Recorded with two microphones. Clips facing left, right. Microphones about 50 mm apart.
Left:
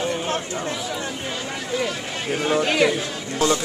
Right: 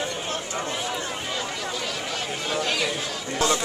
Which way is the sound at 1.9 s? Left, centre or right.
Left.